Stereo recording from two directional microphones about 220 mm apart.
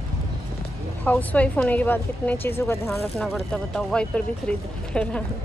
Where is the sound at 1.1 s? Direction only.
5° left (ahead or behind).